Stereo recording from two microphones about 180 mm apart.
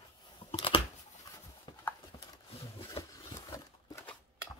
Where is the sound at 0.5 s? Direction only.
30° left (ahead or behind).